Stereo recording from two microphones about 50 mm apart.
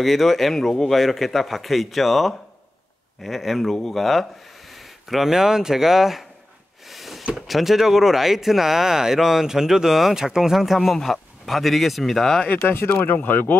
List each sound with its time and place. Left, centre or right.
0.0 s a man's voice: centre
6.9 s a sound: centre
7.3 s a man's voice: centre
12.6 s speech: left